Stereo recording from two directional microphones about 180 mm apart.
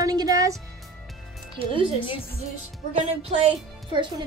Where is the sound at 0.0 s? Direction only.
20° right (ahead or behind).